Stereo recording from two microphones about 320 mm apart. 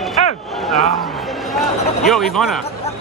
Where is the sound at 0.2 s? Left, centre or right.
Left.